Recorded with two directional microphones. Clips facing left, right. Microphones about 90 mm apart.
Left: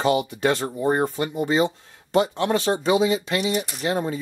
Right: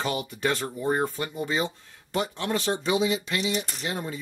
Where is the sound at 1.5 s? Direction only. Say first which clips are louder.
Left 7 dB; 60° left (ahead or behind).